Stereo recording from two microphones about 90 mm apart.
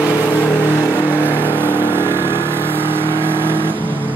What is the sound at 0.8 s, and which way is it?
Vehicle, 20° left (ahead or behind).